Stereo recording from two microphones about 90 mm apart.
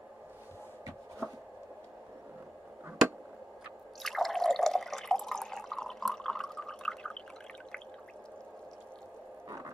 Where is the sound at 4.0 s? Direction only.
Centre (ahead or behind).